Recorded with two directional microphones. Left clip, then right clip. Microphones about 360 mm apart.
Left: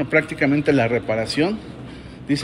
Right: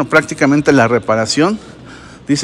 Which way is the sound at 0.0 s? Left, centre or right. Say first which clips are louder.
Right 7 dB; right.